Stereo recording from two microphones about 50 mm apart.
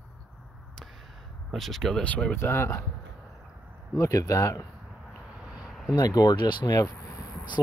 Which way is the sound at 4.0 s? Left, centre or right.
Left.